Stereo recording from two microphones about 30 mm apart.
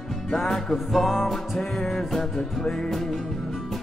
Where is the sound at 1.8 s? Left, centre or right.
Centre.